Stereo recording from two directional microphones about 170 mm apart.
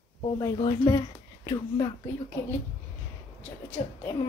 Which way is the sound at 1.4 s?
20° left (ahead or behind).